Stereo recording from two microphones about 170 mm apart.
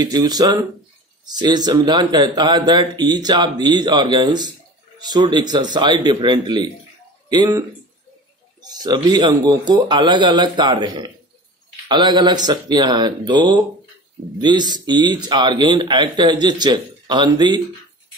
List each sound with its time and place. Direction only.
0.0 s a man's voice: 25° right (ahead or behind)
8.6 s a man's voice: 25° right (ahead or behind)